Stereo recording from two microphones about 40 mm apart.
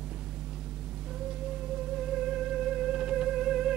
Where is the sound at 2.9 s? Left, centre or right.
Centre.